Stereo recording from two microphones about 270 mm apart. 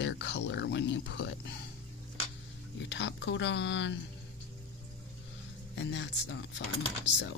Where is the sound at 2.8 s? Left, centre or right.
Left.